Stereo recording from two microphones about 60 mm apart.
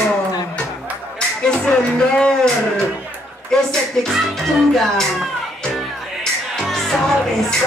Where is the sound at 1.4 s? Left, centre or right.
Centre.